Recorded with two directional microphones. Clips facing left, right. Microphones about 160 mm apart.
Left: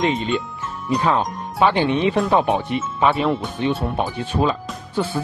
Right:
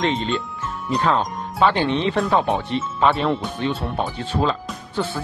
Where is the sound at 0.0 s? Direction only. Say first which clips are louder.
Left 2 dB; 15° left (ahead or behind).